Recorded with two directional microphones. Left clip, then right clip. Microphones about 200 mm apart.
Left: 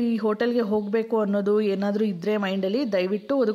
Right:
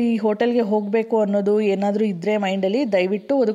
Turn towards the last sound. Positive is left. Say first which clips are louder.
# right 4 dB
turn(degrees=-5)  # may be behind; listen again after turning